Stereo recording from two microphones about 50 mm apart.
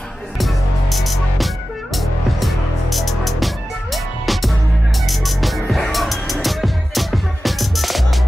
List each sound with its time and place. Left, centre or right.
0.4 s music: centre